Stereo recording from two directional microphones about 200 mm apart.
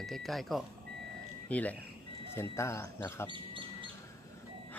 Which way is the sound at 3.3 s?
25° right (ahead or behind).